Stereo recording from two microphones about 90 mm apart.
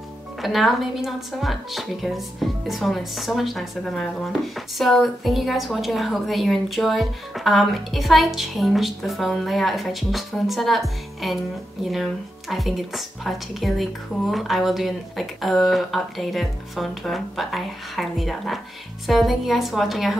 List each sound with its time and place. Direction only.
0.4 s speech: centre (ahead or behind)